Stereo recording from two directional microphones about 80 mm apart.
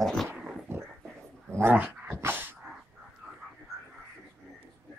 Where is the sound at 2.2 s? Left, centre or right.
Right.